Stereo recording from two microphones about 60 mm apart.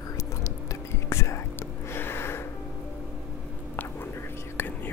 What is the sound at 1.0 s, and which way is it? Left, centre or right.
Whispering, left.